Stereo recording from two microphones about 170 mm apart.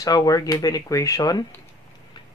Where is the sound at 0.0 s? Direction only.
20° left (ahead or behind).